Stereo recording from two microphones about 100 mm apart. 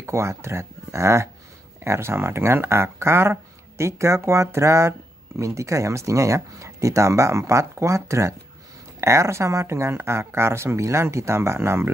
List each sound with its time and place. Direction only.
0.0 s speech: 25° right (ahead or behind)